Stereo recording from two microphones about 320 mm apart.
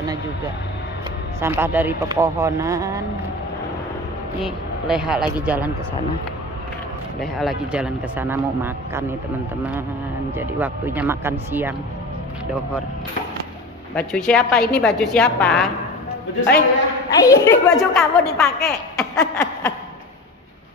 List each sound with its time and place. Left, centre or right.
1.4 s speech: centre
4.4 s a woman's voice: centre
7.3 s a woman's voice: centre
10.3 s speech: centre
13.9 s a woman's voice: centre
16.3 s a man's voice: left
17.1 s a woman's voice: centre
18.9 s a sound: centre